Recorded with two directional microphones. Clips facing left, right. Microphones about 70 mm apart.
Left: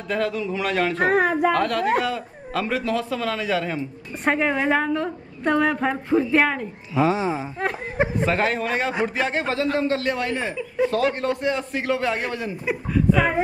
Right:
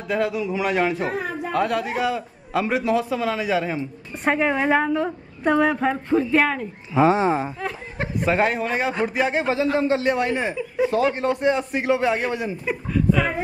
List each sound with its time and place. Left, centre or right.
0.1 s a man's voice: centre
0.9 s speech: left
1.6 s a man's voice: centre
7.0 s speech: right
8.3 s a man's voice: centre
12.6 s a woman's voice: centre